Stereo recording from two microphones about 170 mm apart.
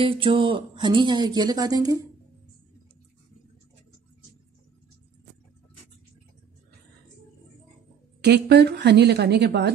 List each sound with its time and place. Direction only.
0.0 s speech: 30° right (ahead or behind)
8.2 s a woman's voice: 75° right (ahead or behind)